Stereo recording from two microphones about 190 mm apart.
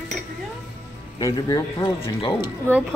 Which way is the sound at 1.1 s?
20° left (ahead or behind).